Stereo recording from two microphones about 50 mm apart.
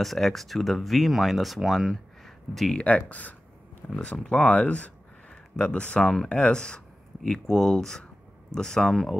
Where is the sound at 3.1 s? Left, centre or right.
Left.